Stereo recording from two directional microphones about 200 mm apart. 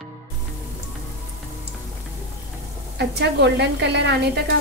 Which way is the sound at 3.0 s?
60° right (ahead or behind).